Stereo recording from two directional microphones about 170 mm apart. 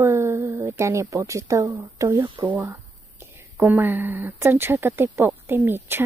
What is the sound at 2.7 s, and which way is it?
Speech, 10° right (ahead or behind).